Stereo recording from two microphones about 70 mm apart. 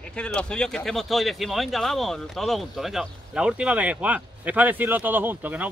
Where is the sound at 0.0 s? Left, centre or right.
Centre.